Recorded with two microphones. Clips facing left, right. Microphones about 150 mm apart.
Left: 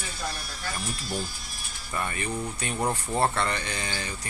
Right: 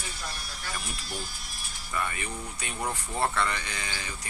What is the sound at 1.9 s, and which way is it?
Speech, 35° left (ahead or behind).